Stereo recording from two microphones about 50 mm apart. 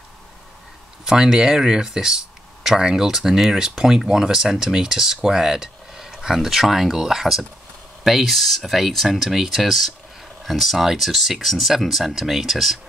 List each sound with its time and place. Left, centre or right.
1.0 s speech: centre